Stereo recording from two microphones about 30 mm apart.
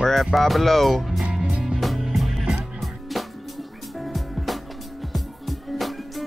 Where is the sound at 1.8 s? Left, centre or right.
Centre.